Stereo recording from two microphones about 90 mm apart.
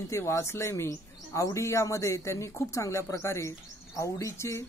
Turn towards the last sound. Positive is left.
turn(degrees=35)  # may be behind; listen again after turning